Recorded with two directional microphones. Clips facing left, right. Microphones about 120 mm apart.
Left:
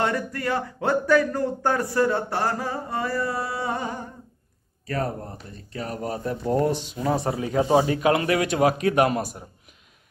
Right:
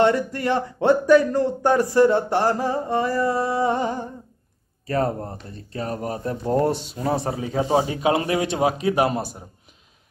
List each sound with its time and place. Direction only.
0.0 s speech: 25° right (ahead or behind)
7.5 s speech: 25° right (ahead or behind)